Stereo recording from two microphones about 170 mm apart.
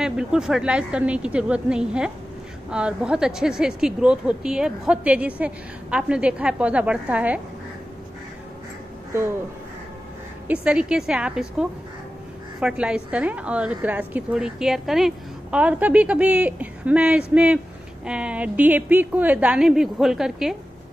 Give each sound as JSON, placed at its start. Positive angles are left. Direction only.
{"t": 0.0, "sound": "speech", "side_deg": -5}
{"t": 10.5, "sound": "speech", "side_deg": -5}
{"t": 12.5, "sound": "a woman's voice", "side_deg": -5}